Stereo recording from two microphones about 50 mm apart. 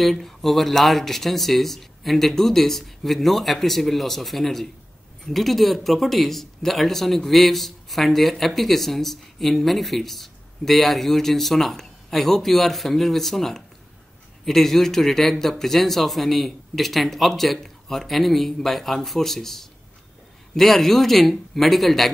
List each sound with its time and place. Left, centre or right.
0.0 s speech: centre